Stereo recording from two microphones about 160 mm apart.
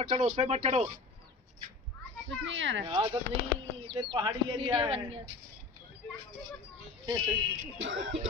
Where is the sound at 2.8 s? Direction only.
30° right (ahead or behind).